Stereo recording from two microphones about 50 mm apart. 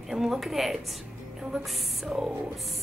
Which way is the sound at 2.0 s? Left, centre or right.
Centre.